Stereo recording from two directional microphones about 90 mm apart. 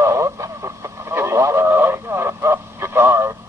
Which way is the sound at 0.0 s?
35° right (ahead or behind).